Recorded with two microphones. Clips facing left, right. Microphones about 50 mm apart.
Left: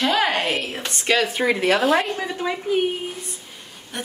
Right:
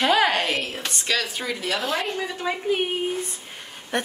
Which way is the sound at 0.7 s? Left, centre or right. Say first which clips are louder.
Left 4 dB; left.